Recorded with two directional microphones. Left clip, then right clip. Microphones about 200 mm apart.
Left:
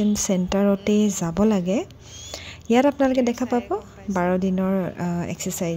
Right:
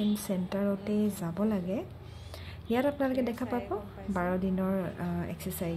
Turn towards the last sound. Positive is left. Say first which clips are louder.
# left 9 dB
turn(degrees=35)  # may be behind; listen again after turning